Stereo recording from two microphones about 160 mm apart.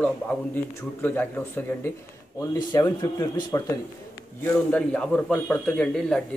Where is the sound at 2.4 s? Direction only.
20° left (ahead or behind).